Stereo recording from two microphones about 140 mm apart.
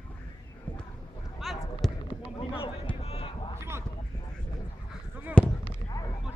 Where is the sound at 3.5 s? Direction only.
20° right (ahead or behind).